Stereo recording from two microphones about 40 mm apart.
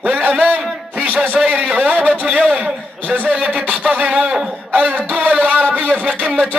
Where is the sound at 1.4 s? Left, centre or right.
Right.